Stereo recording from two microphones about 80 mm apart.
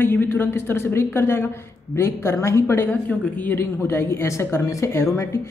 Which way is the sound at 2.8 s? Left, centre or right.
Left.